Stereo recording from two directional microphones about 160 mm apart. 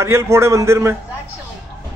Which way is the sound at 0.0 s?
15° right (ahead or behind).